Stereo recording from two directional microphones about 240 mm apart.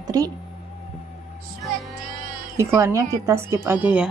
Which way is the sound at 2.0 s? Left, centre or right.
Right.